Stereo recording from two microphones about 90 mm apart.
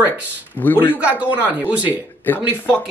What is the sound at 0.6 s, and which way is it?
Speech, 25° left (ahead or behind).